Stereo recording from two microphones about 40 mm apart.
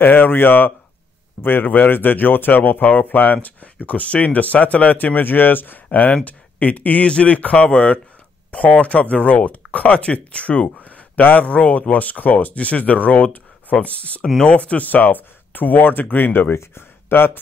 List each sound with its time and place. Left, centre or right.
0.0 s speech: left
3.8 s speech: left
12.5 s speech: left
14.9 s speech: left
16.3 s speech: left